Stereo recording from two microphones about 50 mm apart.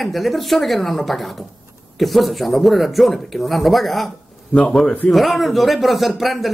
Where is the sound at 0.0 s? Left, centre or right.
Centre.